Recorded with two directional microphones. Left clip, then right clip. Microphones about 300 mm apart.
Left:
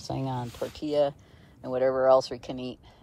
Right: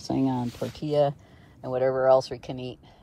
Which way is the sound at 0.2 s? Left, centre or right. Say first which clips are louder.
Right 8 dB; left.